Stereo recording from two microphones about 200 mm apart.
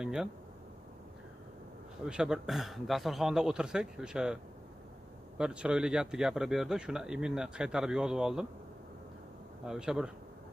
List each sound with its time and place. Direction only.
0.0 s speech: 5° right (ahead or behind)
2.0 s speech: 5° right (ahead or behind)
5.4 s speech: 5° right (ahead or behind)
9.7 s speech: 5° right (ahead or behind)